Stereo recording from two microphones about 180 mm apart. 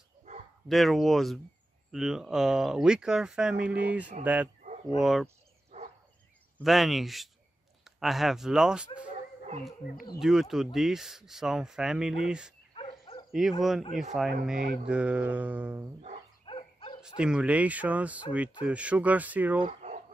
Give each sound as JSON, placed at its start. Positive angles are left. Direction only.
{"t": 0.7, "sound": "speech", "side_deg": 0}
{"t": 5.7, "sound": "a sound", "side_deg": -40}
{"t": 6.6, "sound": "speech", "side_deg": 0}
{"t": 10.1, "sound": "speech", "side_deg": 0}
{"t": 12.7, "sound": "dog", "side_deg": 30}
{"t": 13.3, "sound": "speech", "side_deg": 0}
{"t": 16.4, "sound": "dog", "side_deg": 30}
{"t": 17.2, "sound": "speech", "side_deg": -5}
{"t": 19.6, "sound": "a sound", "side_deg": -40}